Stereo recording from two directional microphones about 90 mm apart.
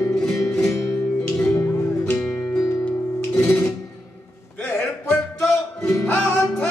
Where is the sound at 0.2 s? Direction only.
10° left (ahead or behind).